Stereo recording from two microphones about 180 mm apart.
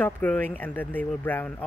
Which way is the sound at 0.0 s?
10° left (ahead or behind).